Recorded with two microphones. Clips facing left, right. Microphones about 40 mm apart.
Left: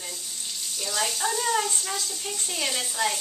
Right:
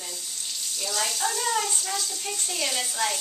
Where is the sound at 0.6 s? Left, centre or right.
Centre.